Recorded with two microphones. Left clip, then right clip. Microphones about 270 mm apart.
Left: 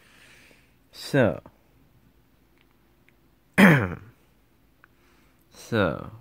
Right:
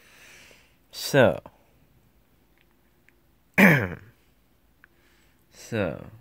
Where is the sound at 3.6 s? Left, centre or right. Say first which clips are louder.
Even; centre.